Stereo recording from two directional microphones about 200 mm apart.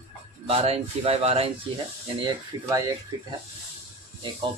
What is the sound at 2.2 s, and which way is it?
Speech, 15° right (ahead or behind).